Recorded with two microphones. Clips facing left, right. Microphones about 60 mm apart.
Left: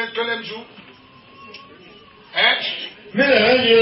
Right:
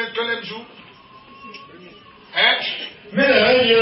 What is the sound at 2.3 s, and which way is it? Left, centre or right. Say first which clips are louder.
Speech: even; centre.